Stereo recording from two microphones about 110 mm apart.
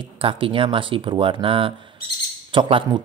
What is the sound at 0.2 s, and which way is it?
Speech, 55° right (ahead or behind).